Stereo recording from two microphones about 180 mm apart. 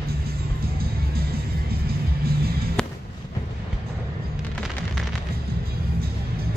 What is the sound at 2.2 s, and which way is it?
Music, 55° right (ahead or behind).